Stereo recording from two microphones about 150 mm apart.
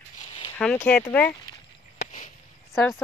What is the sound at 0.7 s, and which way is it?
Speech, 10° left (ahead or behind).